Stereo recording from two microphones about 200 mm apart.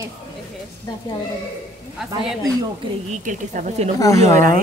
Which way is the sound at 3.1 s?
40° right (ahead or behind).